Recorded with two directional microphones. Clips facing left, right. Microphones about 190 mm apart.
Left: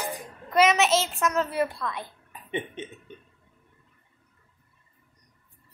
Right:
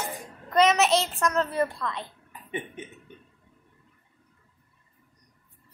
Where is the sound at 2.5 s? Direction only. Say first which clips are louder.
Left 3 dB; 25° left (ahead or behind).